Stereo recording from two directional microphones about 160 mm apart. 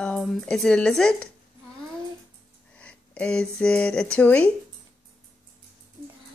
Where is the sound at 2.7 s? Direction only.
5° left (ahead or behind).